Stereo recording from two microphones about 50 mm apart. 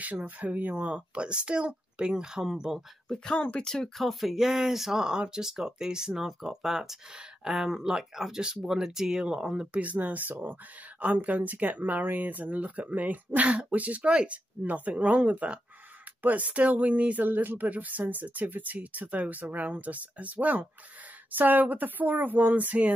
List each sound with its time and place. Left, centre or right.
0.0 s speech: right; by 2.8 s centre
3.3 s speech: left
3.6 s speech: centre
9.7 s speech: right